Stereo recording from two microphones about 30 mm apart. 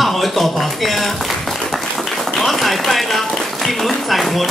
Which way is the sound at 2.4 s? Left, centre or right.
Centre.